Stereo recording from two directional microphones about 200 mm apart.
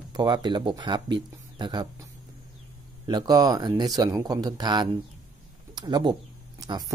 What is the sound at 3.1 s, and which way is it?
Speech, 20° right (ahead or behind).